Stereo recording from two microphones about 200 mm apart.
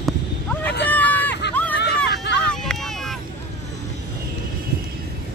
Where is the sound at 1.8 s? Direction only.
55° left (ahead or behind).